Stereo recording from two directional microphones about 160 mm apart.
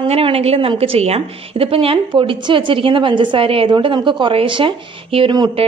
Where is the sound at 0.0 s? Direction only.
35° right (ahead or behind).